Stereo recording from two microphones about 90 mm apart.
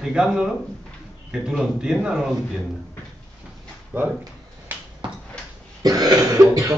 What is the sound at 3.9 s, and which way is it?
Speech, 20° right (ahead or behind).